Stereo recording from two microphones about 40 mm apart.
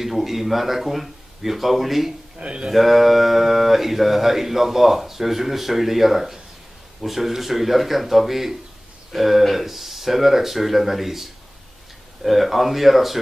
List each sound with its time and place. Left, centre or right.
0.0 s speech: centre
2.3 s speech: right
2.7 s speech: centre